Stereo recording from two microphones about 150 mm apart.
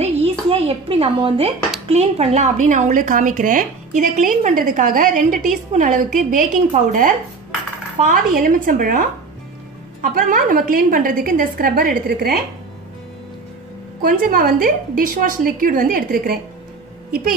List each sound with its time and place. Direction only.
0.0 s a sound: 40° right (ahead or behind)
1.9 s a woman's voice: 45° right (ahead or behind); by 9.0 s 65° right (ahead or behind)
10.1 s a woman's voice: 65° right (ahead or behind)
14.0 s a woman's voice: 70° right (ahead or behind)